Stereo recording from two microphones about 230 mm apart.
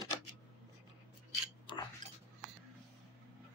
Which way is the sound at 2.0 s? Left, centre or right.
Right.